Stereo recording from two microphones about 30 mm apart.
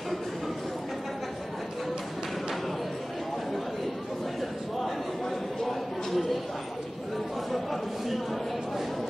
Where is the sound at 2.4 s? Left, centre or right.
Centre.